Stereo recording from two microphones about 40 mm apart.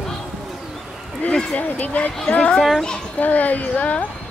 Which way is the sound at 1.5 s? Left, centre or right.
Left.